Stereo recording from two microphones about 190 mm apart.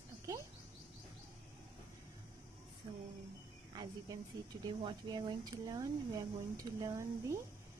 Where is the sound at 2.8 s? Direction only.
30° right (ahead or behind).